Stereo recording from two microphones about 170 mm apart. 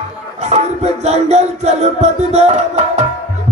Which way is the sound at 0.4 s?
40° right (ahead or behind).